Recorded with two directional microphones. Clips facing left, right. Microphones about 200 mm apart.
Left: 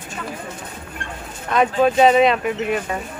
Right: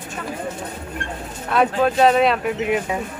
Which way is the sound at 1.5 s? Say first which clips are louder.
Left 1 dB; centre (ahead or behind).